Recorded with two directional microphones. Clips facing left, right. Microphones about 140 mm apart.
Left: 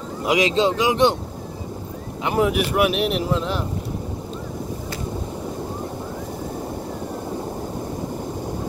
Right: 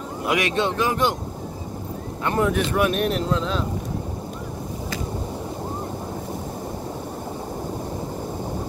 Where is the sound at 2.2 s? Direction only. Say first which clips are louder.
Left 2 dB; 10° left (ahead or behind).